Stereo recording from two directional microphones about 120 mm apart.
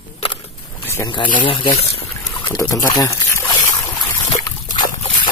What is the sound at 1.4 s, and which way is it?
Speech, 45° left (ahead or behind).